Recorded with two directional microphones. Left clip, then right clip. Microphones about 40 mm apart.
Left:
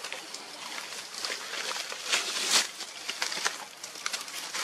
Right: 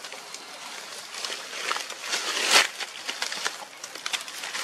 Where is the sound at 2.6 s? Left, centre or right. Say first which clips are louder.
Right 8 dB; right.